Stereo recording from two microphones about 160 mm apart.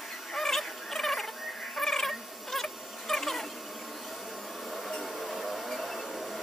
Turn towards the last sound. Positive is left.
turn(degrees=0)  # may be behind; listen again after turning